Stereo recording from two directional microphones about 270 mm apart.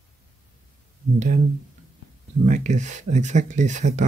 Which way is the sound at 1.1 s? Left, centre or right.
Right.